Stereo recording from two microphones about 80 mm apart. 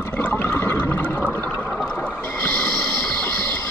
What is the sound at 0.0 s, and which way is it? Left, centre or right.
Toilet flush, left.